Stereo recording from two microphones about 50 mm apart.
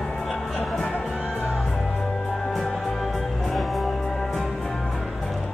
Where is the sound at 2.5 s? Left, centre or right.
Centre.